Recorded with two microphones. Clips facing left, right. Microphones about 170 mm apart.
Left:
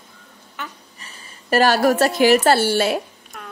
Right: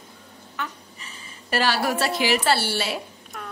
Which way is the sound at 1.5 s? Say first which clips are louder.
Left 7 dB; 45° left (ahead or behind).